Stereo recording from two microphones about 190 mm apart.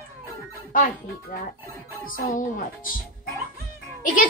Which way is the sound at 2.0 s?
45° left (ahead or behind).